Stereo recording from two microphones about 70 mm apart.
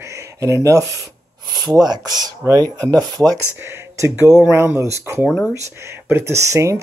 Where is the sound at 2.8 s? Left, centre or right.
Right.